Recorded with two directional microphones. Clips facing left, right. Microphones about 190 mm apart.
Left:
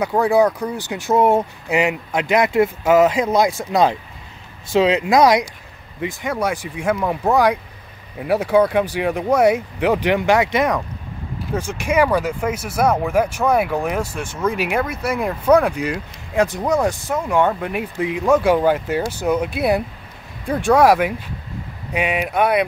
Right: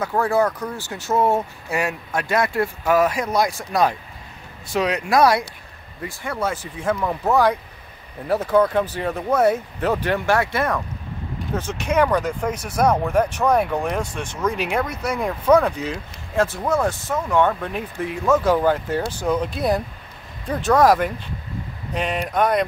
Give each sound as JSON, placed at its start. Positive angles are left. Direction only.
{"t": 0.0, "sound": "speech", "side_deg": 15}
{"t": 5.0, "sound": "speech", "side_deg": 20}